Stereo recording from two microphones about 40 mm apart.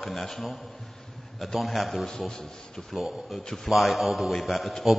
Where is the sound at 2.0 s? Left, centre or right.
Centre.